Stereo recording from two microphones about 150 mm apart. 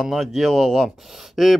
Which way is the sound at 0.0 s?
Centre (ahead or behind).